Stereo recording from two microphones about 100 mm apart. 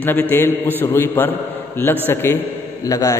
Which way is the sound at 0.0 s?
20° left (ahead or behind).